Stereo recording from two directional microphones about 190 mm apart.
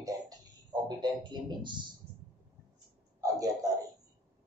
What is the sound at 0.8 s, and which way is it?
Speech, 25° right (ahead or behind).